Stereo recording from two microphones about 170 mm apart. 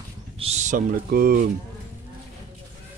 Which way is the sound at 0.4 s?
40° right (ahead or behind).